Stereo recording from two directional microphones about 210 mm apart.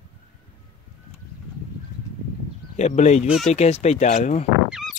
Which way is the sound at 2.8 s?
35° left (ahead or behind).